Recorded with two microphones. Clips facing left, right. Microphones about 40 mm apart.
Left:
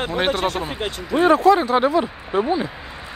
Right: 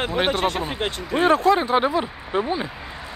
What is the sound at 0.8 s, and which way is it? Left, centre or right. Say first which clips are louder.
Speech: left 3 dB; right.